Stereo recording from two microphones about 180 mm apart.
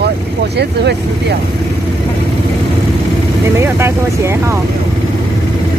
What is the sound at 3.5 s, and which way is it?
Speech, 15° right (ahead or behind).